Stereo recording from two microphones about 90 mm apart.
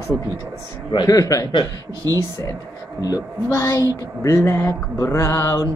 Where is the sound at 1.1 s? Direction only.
40° left (ahead or behind).